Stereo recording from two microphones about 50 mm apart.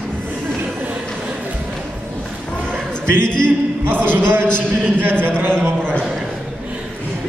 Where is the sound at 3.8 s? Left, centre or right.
Right.